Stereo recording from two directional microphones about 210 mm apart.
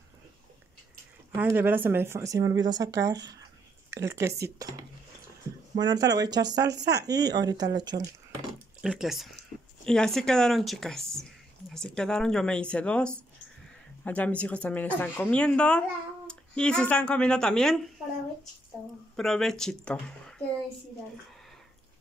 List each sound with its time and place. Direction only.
1.3 s speech: 10° right (ahead or behind)
8.8 s speech: centre (ahead or behind)
19.1 s speech: centre (ahead or behind)